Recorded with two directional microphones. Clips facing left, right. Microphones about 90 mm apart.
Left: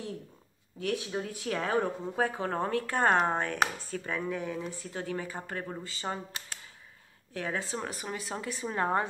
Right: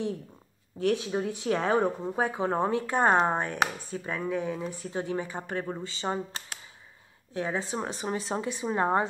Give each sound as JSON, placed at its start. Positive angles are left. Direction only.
{"t": 0.7, "sound": "speech", "side_deg": -25}
{"t": 7.3, "sound": "speech", "side_deg": -25}